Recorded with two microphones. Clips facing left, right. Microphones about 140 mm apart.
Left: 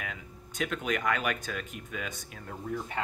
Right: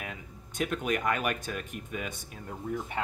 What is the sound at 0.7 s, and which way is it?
Speech, 10° right (ahead or behind).